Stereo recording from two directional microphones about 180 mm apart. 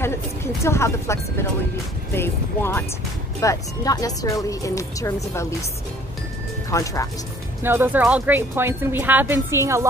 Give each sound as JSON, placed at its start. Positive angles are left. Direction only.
{"t": 0.7, "sound": "speech", "side_deg": 15}
{"t": 6.7, "sound": "speech", "side_deg": 20}
{"t": 7.6, "sound": "speech", "side_deg": -10}